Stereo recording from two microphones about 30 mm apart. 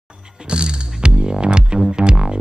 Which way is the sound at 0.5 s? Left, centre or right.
Right.